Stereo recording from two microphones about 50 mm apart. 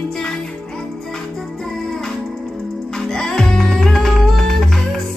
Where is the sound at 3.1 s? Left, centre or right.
Centre.